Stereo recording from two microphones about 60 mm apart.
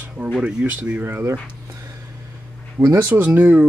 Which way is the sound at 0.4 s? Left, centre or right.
Centre.